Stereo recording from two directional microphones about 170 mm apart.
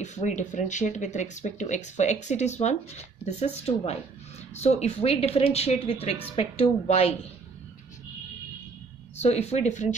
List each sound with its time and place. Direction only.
0.0 s speech: 45° left (ahead or behind)
9.2 s speech: 40° left (ahead or behind)